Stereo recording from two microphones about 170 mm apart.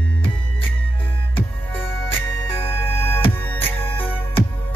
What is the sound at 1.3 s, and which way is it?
Music, 15° left (ahead or behind).